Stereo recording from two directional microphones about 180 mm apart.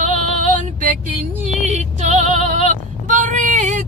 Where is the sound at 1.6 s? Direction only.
40° right (ahead or behind).